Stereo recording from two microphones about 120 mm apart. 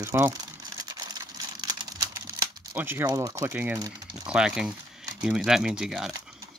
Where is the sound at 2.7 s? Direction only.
15° right (ahead or behind).